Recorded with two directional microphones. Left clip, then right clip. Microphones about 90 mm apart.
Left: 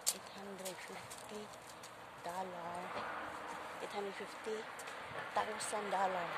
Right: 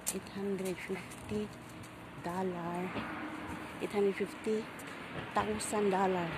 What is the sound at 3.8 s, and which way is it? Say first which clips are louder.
Speech: right 13 dB; 35° right (ahead or behind).